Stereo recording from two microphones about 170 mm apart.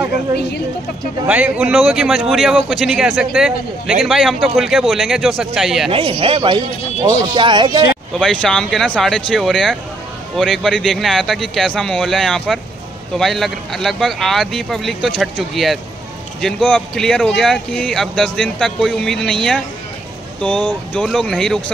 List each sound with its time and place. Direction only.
1.2 s speech: 5° right (ahead or behind)
5.9 s speech: 30° right (ahead or behind)
8.2 s speech: 5° left (ahead or behind)
20.9 s speech: centre (ahead or behind)